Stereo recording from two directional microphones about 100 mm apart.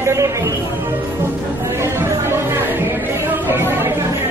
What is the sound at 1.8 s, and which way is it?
Chatter, 30° right (ahead or behind).